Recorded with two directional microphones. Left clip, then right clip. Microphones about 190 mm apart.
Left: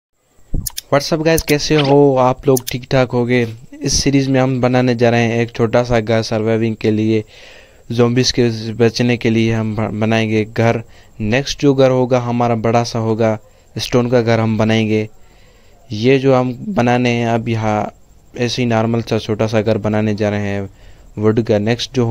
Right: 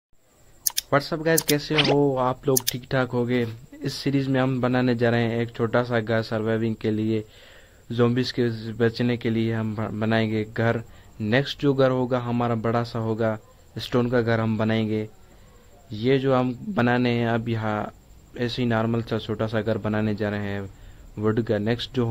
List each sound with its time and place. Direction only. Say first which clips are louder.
0.8 s speech: left 9 dB; 40° left (ahead or behind)